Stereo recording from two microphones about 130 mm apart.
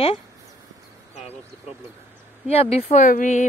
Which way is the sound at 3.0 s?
80° left.